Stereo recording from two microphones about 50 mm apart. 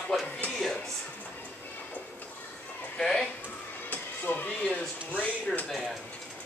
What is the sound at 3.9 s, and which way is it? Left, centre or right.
Music, left.